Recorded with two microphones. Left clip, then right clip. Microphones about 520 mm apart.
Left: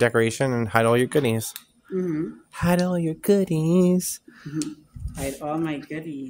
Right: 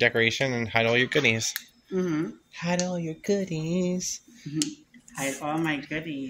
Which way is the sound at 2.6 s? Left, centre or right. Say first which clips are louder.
Left 5 dB; left.